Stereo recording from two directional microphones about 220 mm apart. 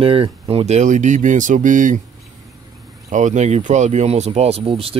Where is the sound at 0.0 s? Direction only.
25° right (ahead or behind).